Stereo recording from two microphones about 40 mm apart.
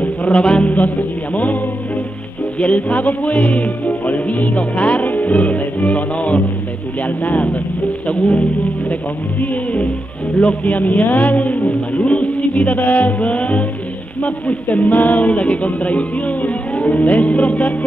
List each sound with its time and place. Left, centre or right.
0.0 s music: left
0.4 s music: left
0.7 s speech: left
2.6 s music: left
9.4 s speech: left
10.4 s music: left
11.0 s speech: left
11.9 s music: left